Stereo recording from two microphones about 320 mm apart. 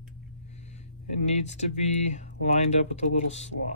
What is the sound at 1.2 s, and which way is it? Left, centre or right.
Speech, left.